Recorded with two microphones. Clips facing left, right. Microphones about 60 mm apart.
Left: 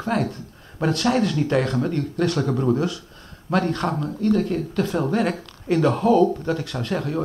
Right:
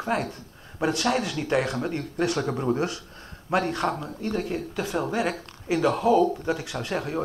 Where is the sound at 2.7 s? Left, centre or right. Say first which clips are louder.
Left 3 dB; right.